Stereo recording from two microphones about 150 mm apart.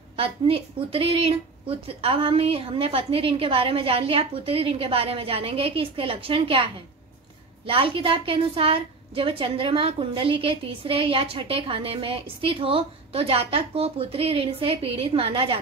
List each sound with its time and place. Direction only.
0.1 s a woman's voice: 40° right (ahead or behind)